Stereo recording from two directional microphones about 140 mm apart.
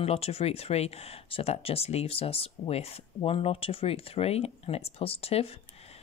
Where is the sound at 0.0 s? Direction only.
45° left (ahead or behind).